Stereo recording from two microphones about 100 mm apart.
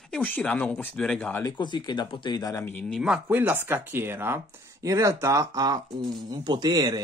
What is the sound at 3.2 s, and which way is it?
Speech, 20° right (ahead or behind).